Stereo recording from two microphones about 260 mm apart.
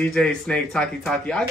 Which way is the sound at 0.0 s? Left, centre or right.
Centre.